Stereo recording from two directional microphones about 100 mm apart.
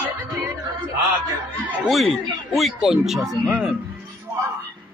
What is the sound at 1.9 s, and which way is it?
Speech, centre (ahead or behind).